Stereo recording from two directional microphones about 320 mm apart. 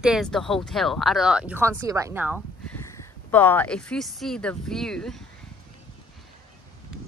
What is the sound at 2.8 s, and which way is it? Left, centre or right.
Speech, centre.